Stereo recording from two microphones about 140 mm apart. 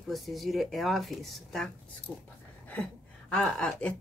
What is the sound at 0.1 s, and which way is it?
Speech, centre (ahead or behind).